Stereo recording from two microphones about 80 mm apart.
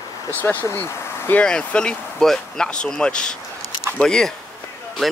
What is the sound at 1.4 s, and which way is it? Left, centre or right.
Speech, centre.